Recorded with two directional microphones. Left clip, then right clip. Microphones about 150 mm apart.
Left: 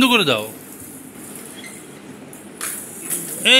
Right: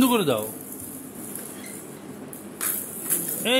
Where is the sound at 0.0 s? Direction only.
Centre (ahead or behind).